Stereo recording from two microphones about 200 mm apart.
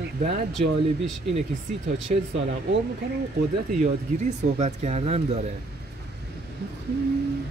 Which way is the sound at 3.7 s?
35° right (ahead or behind).